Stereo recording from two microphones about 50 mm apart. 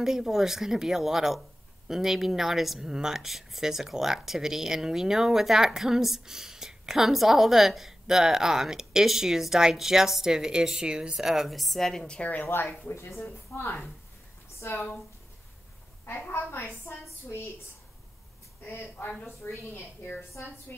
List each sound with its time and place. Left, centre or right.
0.0 s speech: centre
11.1 s speech: centre
12.2 s a woman's voice: left
13.2 s speech: left
16.1 s a woman's voice: left
16.9 s a woman's voice: left
19.4 s a woman's voice: left